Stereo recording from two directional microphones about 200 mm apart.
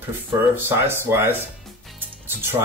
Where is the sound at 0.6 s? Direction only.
10° right (ahead or behind).